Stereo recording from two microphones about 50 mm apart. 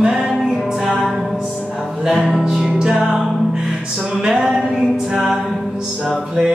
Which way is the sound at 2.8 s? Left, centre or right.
Centre.